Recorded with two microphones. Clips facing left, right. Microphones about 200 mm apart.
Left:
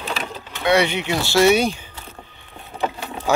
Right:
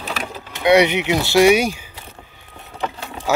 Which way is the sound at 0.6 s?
20° right (ahead or behind).